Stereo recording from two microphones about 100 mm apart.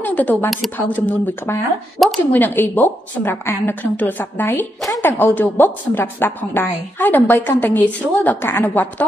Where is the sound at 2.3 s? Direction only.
20° left (ahead or behind).